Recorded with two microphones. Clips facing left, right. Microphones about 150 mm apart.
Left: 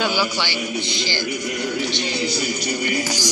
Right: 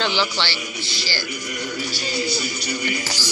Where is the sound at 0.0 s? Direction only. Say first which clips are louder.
Left 1 dB; 10° left (ahead or behind).